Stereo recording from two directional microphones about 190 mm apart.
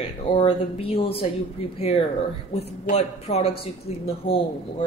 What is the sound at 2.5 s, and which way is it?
Speech, 35° left (ahead or behind).